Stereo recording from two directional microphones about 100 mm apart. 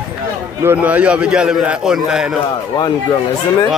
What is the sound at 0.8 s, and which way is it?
A man's voice, 15° right (ahead or behind).